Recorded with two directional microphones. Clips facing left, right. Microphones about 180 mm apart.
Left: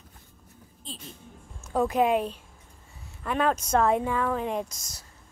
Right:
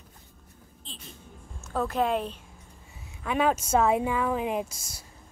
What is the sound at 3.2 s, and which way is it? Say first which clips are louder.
Speech: right 1 dB; 5° right (ahead or behind).